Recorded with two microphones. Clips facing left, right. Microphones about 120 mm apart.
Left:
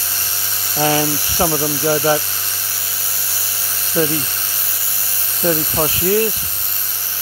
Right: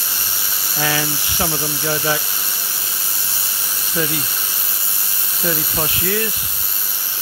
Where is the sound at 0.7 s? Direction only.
35° left (ahead or behind).